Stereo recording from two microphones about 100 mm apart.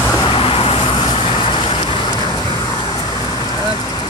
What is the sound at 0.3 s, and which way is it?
Vehicle, 65° left (ahead or behind).